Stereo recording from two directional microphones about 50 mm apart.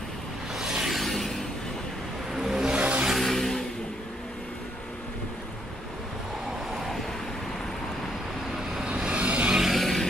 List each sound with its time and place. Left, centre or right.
0.6 s a sound: centre
0.9 s a sound: centre
2.3 s vehicle: centre
2.8 s vehicle: right
3.1 s vehicle: centre
6.8 s vehicle: centre
8.8 s vehicle: right
9.6 s vehicle: centre